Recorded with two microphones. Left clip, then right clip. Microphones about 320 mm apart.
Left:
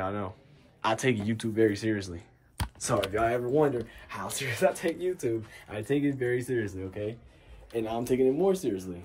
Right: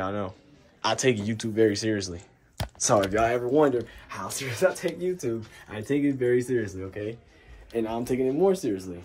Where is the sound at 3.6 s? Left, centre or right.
Centre.